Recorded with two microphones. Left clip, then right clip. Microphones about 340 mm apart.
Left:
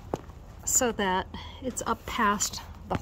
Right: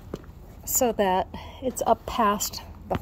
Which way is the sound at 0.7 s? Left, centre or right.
Left.